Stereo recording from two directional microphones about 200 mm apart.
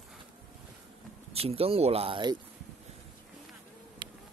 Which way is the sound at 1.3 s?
30° right (ahead or behind).